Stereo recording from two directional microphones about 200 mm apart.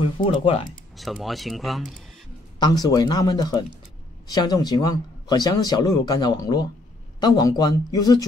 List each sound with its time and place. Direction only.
0.0 s speech: 25° left (ahead or behind)
0.9 s speech: centre (ahead or behind)
2.6 s speech: 20° left (ahead or behind)